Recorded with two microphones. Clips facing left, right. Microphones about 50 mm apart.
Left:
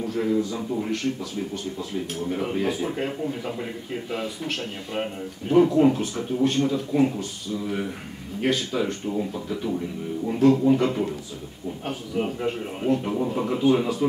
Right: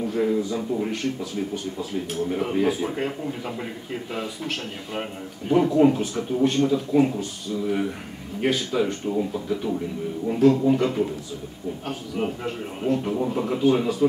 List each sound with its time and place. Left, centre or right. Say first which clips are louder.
0.0 s a man's voice: right 1 dB; centre